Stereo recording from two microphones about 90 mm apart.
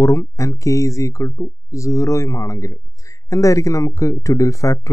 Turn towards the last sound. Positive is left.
turn(degrees=35)  # may be behind; listen again after turning